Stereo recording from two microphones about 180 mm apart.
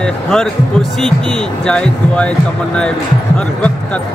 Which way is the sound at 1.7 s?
5° left (ahead or behind).